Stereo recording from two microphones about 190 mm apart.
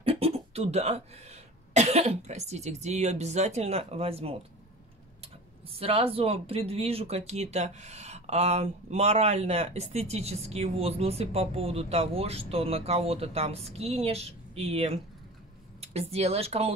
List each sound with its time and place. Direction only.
0.0 s speech: 30° right (ahead or behind)